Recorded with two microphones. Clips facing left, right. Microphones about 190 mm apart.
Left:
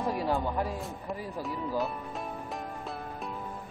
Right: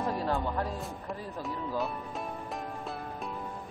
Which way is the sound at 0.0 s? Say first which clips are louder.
Left 1 dB; 10° left (ahead or behind).